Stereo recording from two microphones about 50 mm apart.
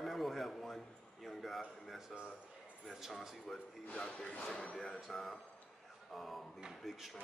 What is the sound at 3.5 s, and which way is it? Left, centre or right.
Speech, centre.